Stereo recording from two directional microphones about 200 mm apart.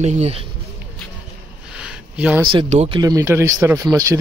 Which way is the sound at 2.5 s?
30° right (ahead or behind).